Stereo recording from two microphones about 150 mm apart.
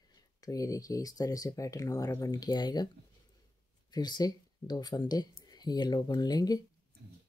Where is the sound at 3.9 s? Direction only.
25° left (ahead or behind).